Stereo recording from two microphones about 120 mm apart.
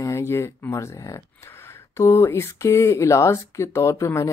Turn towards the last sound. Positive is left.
turn(degrees=25)  # may be behind; listen again after turning